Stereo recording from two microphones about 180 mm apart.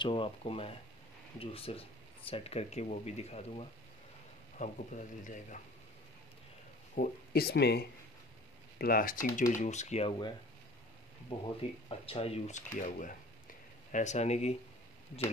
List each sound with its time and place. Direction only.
0.0 s a man's voice: 30° left (ahead or behind); by 5.6 s 45° left (ahead or behind)
7.0 s speech: 60° left (ahead or behind)
9.4 s speech: 45° left (ahead or behind)
11.6 s speech: 35° left (ahead or behind)